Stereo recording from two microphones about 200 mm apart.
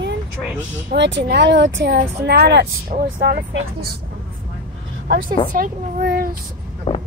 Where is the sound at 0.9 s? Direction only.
65° right (ahead or behind).